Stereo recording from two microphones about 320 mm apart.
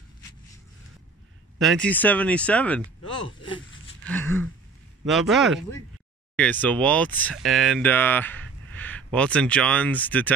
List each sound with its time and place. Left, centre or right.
1.6 s speech: centre
3.3 s speech: centre